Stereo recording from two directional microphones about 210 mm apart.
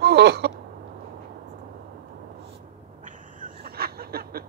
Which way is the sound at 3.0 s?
40° right (ahead or behind).